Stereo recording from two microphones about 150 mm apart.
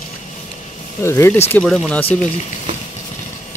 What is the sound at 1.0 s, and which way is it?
Speech, 15° left (ahead or behind).